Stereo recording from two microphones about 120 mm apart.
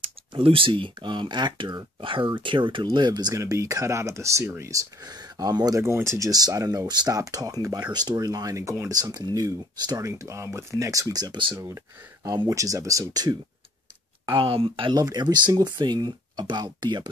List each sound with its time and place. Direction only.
0.0 s speech: 45° right (ahead or behind)
11.5 s speech: 25° right (ahead or behind)
14.2 s speech: 45° right (ahead or behind)
15.0 s speech: 35° right (ahead or behind)